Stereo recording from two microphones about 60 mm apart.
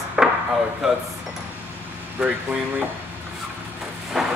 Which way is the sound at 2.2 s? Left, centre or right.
Right.